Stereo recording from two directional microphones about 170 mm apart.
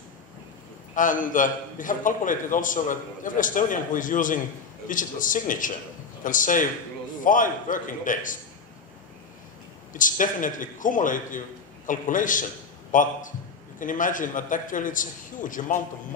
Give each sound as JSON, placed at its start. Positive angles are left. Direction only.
{"t": 0.9, "sound": "a man's voice", "side_deg": 50}
{"t": 9.9, "sound": "a man's voice", "side_deg": 50}